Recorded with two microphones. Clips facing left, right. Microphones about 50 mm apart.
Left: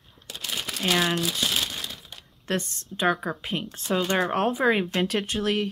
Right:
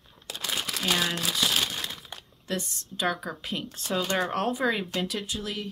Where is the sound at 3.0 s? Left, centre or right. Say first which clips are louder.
Left 5 dB; left.